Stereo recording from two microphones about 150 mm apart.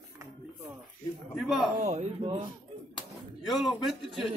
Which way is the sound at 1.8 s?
45° right (ahead or behind).